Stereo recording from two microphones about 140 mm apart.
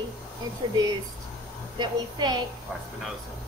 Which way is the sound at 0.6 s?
35° right (ahead or behind).